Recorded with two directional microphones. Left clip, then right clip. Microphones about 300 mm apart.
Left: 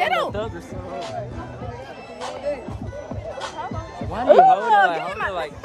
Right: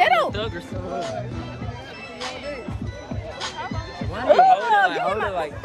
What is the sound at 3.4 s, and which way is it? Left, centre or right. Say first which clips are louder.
Music: right 2 dB; left.